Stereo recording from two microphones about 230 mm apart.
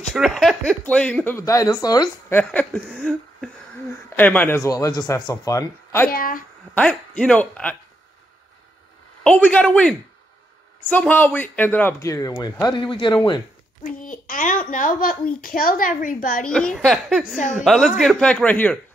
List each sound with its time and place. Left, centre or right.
0.1 s speech: centre
6.1 s a child's voice: left
6.7 s speech: centre
9.2 s speech: centre
13.8 s a child's voice: left
16.4 s speech: centre